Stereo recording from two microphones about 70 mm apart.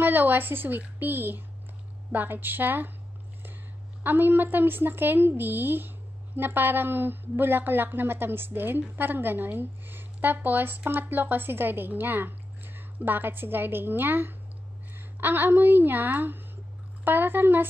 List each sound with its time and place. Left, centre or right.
0.0 s a woman's voice: right
4.0 s a woman's voice: right